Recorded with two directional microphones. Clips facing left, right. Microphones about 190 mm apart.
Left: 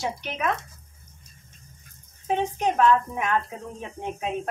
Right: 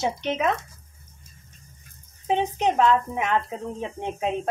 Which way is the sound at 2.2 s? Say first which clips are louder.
Right 2 dB; 20° right (ahead or behind).